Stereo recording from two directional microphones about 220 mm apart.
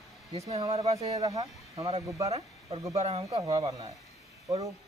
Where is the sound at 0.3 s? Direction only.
25° right (ahead or behind).